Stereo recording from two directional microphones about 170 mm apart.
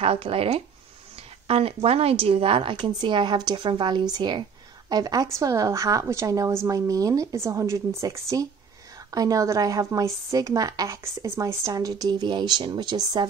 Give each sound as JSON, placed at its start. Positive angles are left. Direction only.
{"t": 0.0, "sound": "speech", "side_deg": -35}